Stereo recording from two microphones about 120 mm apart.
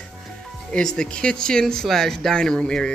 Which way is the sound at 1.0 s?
5° left (ahead or behind).